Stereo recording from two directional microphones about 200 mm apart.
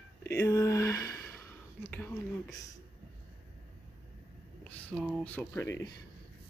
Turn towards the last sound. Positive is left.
turn(degrees=15)  # may be behind; listen again after turning